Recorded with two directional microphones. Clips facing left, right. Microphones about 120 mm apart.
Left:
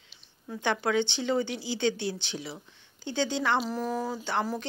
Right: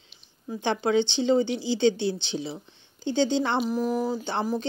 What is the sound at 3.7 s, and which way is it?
Speech, 15° right (ahead or behind).